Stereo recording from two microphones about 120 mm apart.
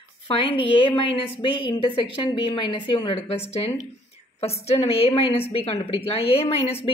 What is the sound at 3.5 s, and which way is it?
A woman's voice, 55° left (ahead or behind).